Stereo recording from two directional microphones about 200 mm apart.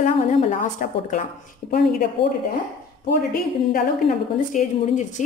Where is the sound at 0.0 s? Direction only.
40° left (ahead or behind).